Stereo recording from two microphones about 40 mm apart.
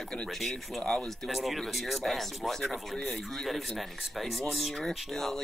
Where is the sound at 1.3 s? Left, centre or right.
Centre.